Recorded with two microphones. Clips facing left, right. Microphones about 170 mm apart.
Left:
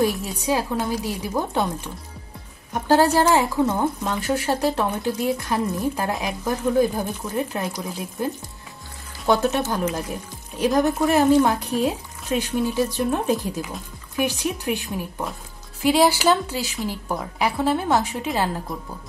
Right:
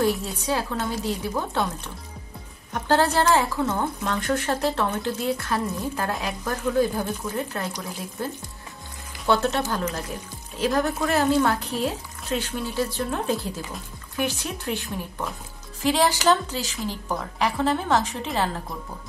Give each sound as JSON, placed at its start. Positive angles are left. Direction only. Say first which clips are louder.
{"t": 0.5, "sound": "a woman's voice", "louder": "left 4 dB", "side_deg": 15}
{"t": 2.7, "sound": "a woman's voice", "louder": "left 4 dB", "side_deg": 10}
{"t": 9.2, "sound": "a woman's voice", "louder": "left 2 dB", "side_deg": 15}